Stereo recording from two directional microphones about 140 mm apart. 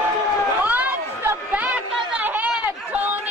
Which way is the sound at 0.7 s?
10° right (ahead or behind).